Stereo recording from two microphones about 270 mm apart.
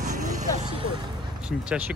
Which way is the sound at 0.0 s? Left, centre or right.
Right.